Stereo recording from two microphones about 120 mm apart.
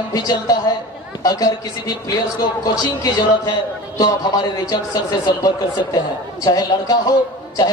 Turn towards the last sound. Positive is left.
turn(degrees=30)  # may be behind; listen again after turning